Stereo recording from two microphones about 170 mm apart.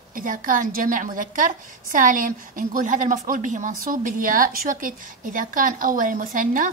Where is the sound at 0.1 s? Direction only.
55° right (ahead or behind).